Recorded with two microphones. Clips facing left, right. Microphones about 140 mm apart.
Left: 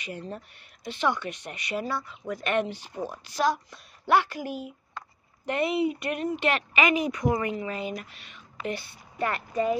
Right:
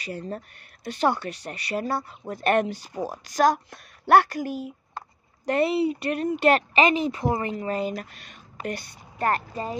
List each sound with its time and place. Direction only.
0.0 s speech: 40° right (ahead or behind)
1.9 s a woman's voice: 50° right (ahead or behind)